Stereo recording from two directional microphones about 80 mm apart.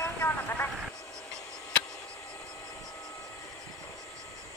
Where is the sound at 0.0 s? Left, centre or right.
Left.